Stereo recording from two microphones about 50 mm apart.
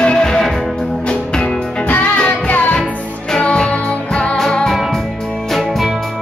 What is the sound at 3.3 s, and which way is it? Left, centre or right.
Music, centre.